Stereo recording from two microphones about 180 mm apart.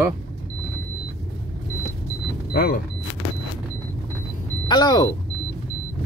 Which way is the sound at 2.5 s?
55° left (ahead or behind).